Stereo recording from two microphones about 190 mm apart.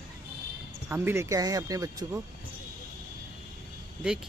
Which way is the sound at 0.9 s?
10° right (ahead or behind).